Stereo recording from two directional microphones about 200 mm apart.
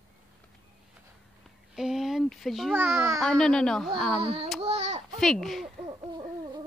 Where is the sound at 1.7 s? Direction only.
Centre (ahead or behind).